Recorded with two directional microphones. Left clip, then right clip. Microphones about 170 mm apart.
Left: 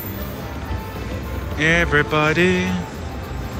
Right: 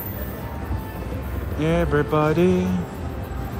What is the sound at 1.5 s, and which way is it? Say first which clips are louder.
Speech: left 5 dB; 15° right (ahead or behind).